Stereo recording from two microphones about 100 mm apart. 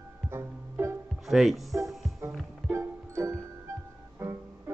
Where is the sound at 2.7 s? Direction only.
25° right (ahead or behind).